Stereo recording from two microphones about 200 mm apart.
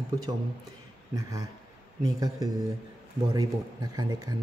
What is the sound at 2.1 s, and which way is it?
Speech, 20° right (ahead or behind).